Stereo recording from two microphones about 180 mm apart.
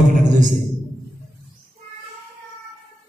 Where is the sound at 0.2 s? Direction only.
45° right (ahead or behind).